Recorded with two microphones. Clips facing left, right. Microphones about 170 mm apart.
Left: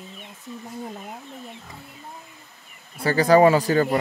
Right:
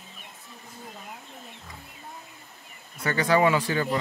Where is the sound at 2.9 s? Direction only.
35° left (ahead or behind).